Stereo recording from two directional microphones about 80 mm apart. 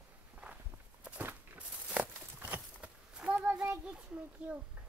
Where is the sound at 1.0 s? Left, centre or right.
Centre.